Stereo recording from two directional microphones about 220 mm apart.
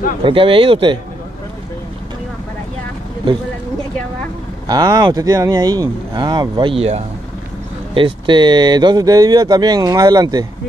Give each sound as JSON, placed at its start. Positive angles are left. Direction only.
{"t": 0.2, "sound": "speech", "side_deg": -25}
{"t": 4.6, "sound": "speech", "side_deg": -20}